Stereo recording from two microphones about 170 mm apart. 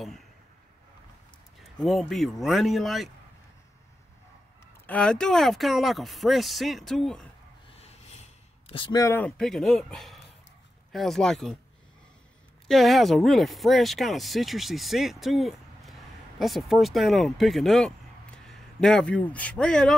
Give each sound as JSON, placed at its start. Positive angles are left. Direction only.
{"t": 1.6, "sound": "speech", "side_deg": 0}
{"t": 4.8, "sound": "speech", "side_deg": 5}
{"t": 7.8, "sound": "a sound", "side_deg": 40}
{"t": 9.4, "sound": "speech", "side_deg": 0}
{"t": 12.6, "sound": "a man's voice", "side_deg": 0}